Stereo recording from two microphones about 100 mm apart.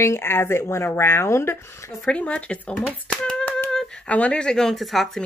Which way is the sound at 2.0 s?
10° left (ahead or behind).